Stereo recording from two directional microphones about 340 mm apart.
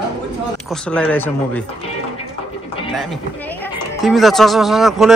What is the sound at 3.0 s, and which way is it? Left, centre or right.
Speech, centre.